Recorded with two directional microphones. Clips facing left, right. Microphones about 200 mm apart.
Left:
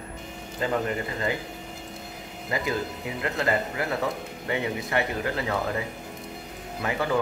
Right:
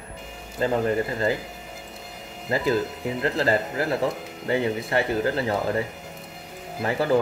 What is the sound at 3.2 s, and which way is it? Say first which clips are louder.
Speech: right 3 dB; 30° right (ahead or behind).